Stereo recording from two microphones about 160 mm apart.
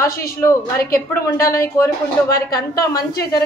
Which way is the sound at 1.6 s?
20° left (ahead or behind).